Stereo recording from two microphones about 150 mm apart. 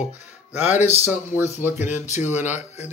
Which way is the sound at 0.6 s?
50° left (ahead or behind).